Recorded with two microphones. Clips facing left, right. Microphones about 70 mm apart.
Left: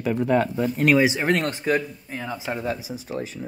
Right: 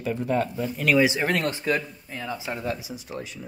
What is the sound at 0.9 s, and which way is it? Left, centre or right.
Speech, left.